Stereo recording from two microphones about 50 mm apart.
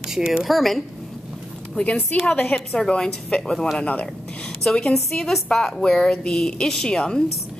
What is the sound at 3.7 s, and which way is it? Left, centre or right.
Speech, left.